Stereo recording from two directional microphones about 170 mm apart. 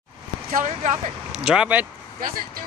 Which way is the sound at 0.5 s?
45° right (ahead or behind).